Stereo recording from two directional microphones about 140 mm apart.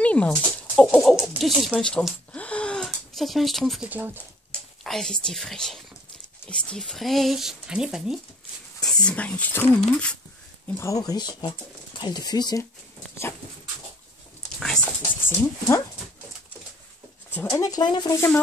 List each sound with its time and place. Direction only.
0.0 s speech: 10° left (ahead or behind)
3.9 s speech: 15° right (ahead or behind)
4.5 s speech: 5° left (ahead or behind)
8.8 s speech: 5° left (ahead or behind); by 12.6 s 30° left (ahead or behind)
15.2 s speech: 15° left (ahead or behind)
17.4 s speech: 25° left (ahead or behind)
18.1 s speech: 20° left (ahead or behind)